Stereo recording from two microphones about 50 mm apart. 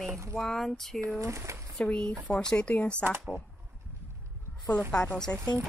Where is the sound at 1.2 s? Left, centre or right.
Right.